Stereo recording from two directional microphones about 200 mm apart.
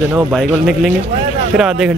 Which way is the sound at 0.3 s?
Centre (ahead or behind).